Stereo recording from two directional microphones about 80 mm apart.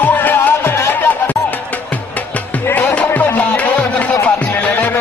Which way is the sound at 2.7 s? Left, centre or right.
Left.